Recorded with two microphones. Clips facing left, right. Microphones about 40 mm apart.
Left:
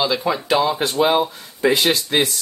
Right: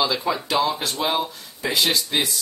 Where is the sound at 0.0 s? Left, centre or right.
Centre.